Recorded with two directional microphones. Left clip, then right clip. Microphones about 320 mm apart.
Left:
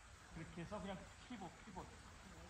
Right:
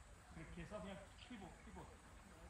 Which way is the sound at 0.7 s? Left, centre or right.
Centre.